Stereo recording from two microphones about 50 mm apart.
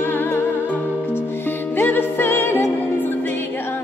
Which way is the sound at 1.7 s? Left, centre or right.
Left.